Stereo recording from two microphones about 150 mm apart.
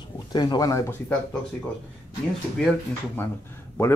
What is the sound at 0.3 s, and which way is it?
Speech, 30° left (ahead or behind).